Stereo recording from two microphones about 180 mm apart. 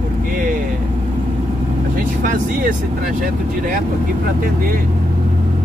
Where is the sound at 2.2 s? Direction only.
50° right (ahead or behind).